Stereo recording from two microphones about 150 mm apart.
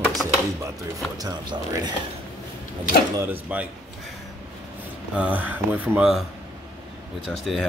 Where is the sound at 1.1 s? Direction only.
30° right (ahead or behind).